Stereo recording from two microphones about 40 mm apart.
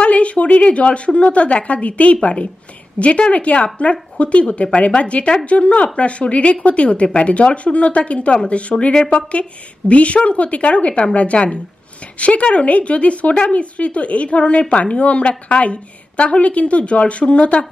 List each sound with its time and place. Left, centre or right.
0.0 s a woman's voice: left
8.9 s a woman's voice: left
9.3 s a woman's voice: left